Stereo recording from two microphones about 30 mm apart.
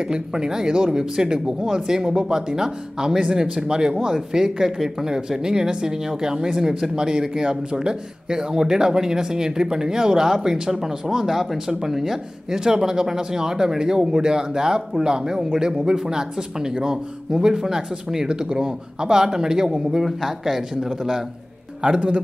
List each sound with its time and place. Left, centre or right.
0.0 s speech: right
20.1 s speech: centre
21.8 s a man's voice: right